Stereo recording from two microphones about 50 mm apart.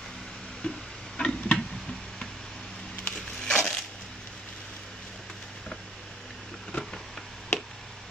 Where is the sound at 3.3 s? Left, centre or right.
Centre.